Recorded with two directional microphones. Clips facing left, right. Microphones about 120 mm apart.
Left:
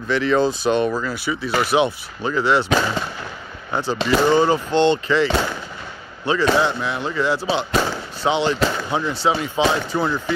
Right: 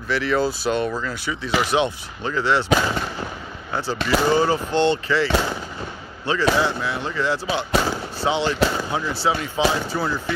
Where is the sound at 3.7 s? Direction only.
20° left (ahead or behind).